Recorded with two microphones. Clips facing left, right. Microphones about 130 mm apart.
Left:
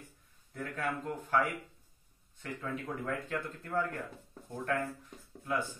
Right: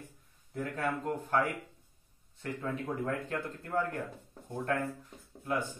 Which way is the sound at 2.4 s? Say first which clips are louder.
Right 3 dB; 20° right (ahead or behind).